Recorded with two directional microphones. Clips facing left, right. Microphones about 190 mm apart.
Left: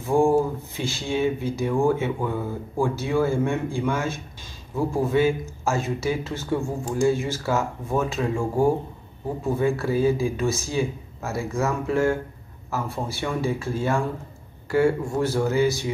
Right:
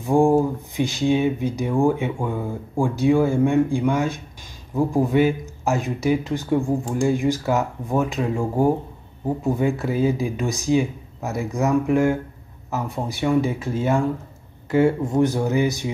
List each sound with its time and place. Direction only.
0.0 s speech: 15° right (ahead or behind)